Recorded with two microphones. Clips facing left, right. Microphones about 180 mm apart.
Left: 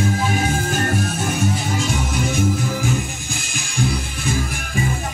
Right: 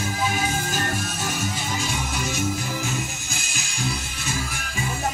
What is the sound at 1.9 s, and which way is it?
Music, 55° left (ahead or behind).